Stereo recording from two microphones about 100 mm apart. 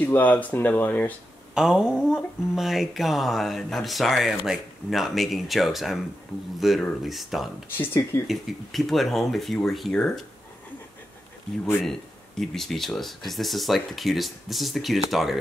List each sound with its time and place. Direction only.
0.0 s speech: 15° left (ahead or behind)
1.5 s speech: 5° right (ahead or behind)
7.7 s speech: 20° left (ahead or behind)
8.3 s speech: centre (ahead or behind)
11.8 s speech: 5° left (ahead or behind)